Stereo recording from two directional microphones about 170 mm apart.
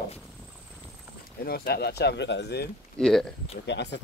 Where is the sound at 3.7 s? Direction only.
90° left.